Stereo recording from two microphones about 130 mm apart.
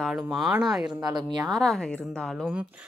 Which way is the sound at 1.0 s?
35° right (ahead or behind).